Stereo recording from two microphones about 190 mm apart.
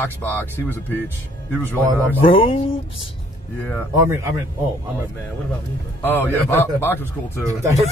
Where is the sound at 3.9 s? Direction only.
15° right (ahead or behind).